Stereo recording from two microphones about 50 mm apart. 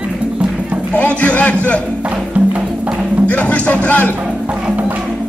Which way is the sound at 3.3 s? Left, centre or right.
Left.